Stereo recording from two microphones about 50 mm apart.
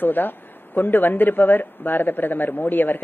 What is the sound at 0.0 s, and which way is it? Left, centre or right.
Speech, left.